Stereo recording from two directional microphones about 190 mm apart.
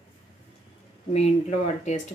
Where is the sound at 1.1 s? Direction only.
35° left (ahead or behind).